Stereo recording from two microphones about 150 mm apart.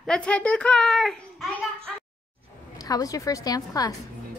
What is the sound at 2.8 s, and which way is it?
A woman's voice, 25° left (ahead or behind).